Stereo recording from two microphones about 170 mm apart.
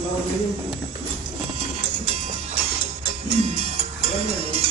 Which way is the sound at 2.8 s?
35° right (ahead or behind).